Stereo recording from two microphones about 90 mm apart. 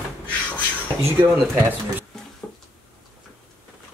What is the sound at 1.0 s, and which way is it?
Speech, 20° right (ahead or behind).